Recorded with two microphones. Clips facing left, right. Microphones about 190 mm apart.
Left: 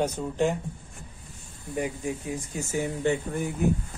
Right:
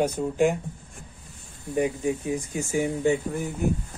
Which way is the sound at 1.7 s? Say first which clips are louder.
Right 5 dB; 20° right (ahead or behind).